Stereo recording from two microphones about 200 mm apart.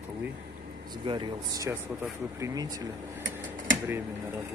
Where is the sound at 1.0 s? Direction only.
25° right (ahead or behind).